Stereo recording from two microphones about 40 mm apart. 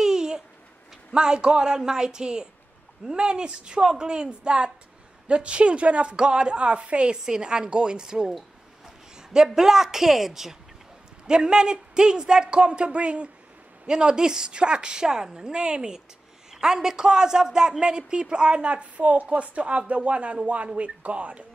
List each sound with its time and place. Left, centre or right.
0.0 s a sound: centre
1.1 s a man's voice: right
11.2 s a man's voice: right